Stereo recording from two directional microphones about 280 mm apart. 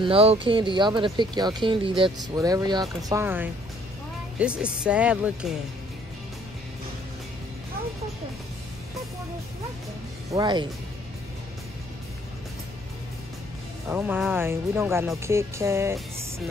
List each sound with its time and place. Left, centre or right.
0.0 s speech: centre
10.3 s speech: centre
13.8 s speech: centre